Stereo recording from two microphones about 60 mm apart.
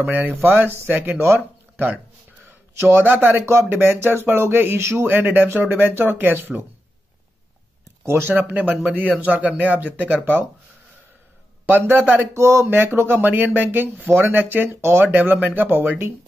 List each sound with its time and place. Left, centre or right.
0.0 s speech: right
2.8 s speech: right
3.1 s speech: right
8.1 s speech: right
8.5 s speech: right
11.6 s speech: right
12.4 s speech: right
12.6 s speech: right
15.0 s speech: right